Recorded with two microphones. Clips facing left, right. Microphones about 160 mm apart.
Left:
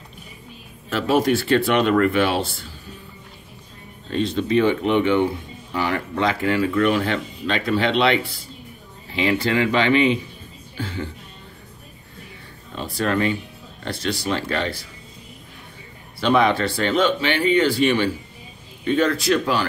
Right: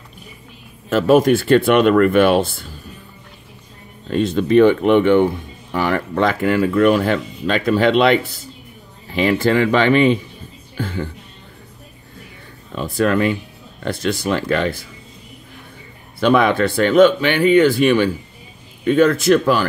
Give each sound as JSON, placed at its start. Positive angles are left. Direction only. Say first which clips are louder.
{"t": 0.8, "sound": "speech", "louder": "right 6 dB", "side_deg": -50}
{"t": 4.1, "sound": "speech", "louder": "right 5 dB", "side_deg": -55}
{"t": 10.8, "sound": "music", "louder": "right 4 dB", "side_deg": -55}
{"t": 14.0, "sound": "speech", "louder": "right 4 dB", "side_deg": -50}
{"t": 16.2, "sound": "speech", "louder": "right 4 dB", "side_deg": -50}